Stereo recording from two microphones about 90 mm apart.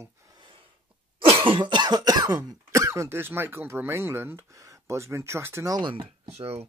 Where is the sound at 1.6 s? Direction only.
55° right (ahead or behind).